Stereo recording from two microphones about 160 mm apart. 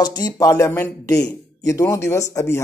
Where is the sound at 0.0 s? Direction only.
25° left (ahead or behind).